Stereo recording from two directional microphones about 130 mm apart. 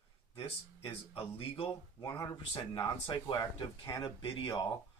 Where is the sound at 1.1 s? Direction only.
45° left (ahead or behind).